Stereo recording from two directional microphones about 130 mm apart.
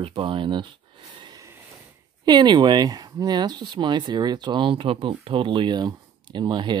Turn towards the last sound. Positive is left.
turn(degrees=-35)  # may be behind; listen again after turning